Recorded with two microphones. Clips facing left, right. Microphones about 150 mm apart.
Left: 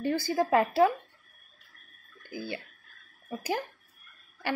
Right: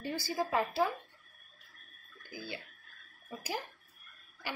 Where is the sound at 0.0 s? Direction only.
55° left (ahead or behind); by 0.9 s 70° left (ahead or behind).